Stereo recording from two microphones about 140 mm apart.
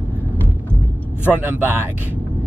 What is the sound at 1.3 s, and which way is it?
Speech, 15° right (ahead or behind).